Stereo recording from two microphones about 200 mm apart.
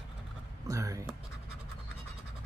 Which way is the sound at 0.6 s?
15° right (ahead or behind).